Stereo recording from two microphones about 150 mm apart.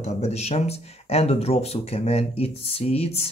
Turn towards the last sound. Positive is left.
turn(degrees=45)  # may be behind; listen again after turning